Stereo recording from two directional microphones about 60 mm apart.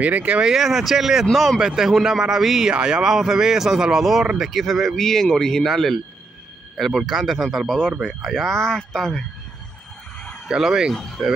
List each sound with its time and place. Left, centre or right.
0.0 s speech: right
0.4 s speech: centre
1.6 s speech: centre
10.5 s speech: centre
10.9 s speech: centre